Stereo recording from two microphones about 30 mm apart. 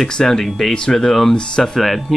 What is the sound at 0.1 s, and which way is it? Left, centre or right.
Speech, centre.